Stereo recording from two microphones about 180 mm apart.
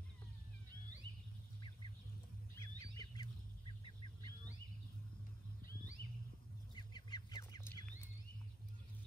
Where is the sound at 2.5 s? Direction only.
15° left (ahead or behind).